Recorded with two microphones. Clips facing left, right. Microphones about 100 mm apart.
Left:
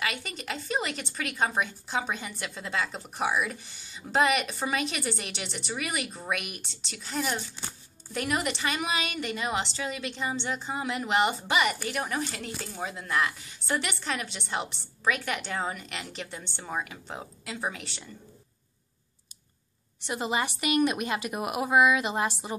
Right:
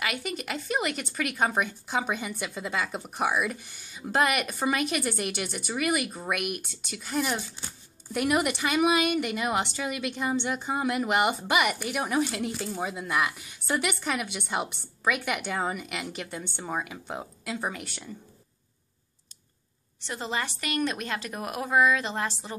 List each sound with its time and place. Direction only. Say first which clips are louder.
0.0 s a woman's voice: right 2 dB; 5° right (ahead or behind)
20.1 s a woman's voice: left 3 dB; 15° left (ahead or behind)